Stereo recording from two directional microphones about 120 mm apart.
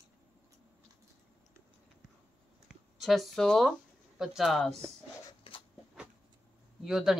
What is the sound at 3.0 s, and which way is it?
Speech, centre (ahead or behind).